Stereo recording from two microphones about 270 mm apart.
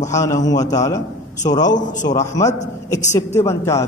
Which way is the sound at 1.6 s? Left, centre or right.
Left.